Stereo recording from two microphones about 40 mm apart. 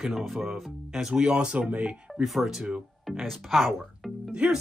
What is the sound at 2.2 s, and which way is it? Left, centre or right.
Speech, centre.